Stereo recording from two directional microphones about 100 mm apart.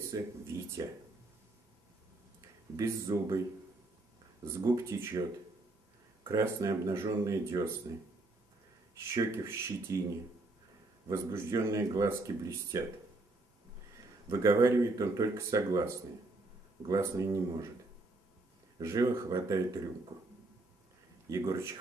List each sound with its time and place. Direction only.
0.1 s speech: 30° right (ahead or behind)
2.7 s speech: 35° right (ahead or behind)
4.5 s speech: 30° right (ahead or behind)
6.2 s speech: 35° right (ahead or behind)
9.0 s speech: 30° right (ahead or behind)
11.1 s speech: 30° right (ahead or behind)
14.3 s speech: 30° right (ahead or behind)
18.8 s speech: 35° right (ahead or behind)
21.3 s speech: 30° right (ahead or behind)